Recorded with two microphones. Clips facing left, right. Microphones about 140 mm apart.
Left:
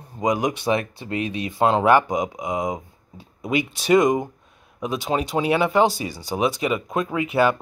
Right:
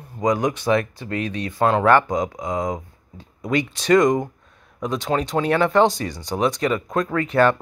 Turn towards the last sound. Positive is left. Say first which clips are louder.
# right 2 dB
turn(degrees=10)  # may be behind; listen again after turning